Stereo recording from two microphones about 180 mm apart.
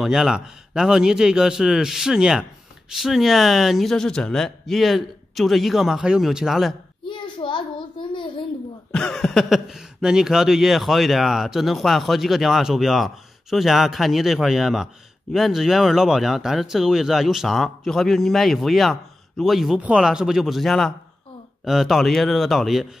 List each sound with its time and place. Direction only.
0.0 s speech: centre (ahead or behind)
7.1 s a sound: 25° left (ahead or behind)
8.9 s speech: 5° left (ahead or behind)